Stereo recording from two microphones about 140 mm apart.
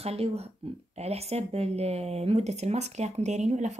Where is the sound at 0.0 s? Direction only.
50° right (ahead or behind).